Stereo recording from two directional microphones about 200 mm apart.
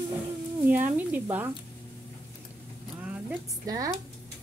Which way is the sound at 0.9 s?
10° right (ahead or behind).